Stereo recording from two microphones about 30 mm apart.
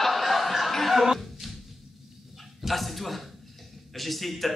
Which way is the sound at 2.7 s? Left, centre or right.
Centre.